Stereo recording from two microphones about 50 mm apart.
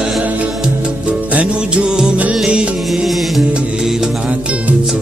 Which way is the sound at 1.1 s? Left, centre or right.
Right.